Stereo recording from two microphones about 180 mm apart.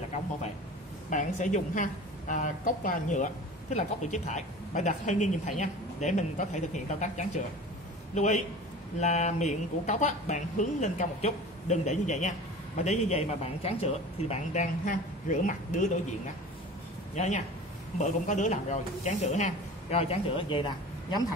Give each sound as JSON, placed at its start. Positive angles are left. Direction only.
{"t": 1.1, "sound": "a woman's voice", "side_deg": 45}
{"t": 17.1, "sound": "a woman's voice", "side_deg": 40}